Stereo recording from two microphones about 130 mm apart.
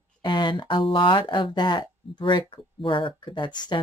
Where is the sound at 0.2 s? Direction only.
35° left (ahead or behind).